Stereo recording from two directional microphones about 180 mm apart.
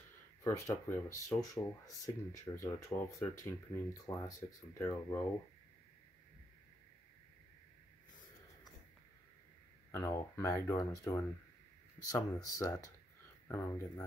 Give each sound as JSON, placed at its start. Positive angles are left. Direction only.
{"t": 0.4, "sound": "speech", "side_deg": 15}
{"t": 9.8, "sound": "speech", "side_deg": 15}